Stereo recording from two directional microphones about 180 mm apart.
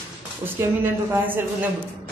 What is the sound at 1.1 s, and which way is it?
Speech, 10° right (ahead or behind).